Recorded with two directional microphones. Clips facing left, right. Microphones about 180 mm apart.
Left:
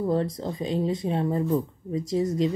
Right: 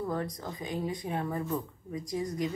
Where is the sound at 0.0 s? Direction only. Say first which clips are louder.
Left 8 dB; 25° left (ahead or behind).